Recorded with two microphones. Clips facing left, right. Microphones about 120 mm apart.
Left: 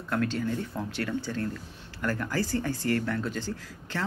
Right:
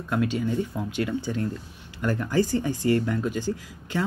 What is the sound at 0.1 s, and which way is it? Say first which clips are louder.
Speech: right 3 dB; 15° right (ahead or behind).